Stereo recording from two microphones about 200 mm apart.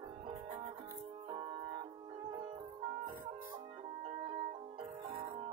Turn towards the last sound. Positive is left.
turn(degrees=-30)  # may be behind; listen again after turning